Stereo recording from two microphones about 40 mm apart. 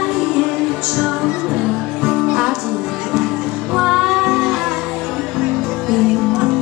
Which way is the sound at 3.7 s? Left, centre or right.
Centre.